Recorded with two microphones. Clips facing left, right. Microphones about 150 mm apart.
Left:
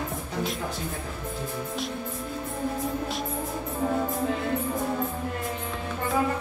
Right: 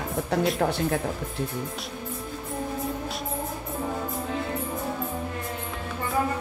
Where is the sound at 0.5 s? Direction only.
70° right (ahead or behind).